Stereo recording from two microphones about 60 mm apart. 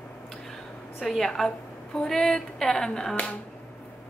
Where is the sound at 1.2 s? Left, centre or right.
Centre.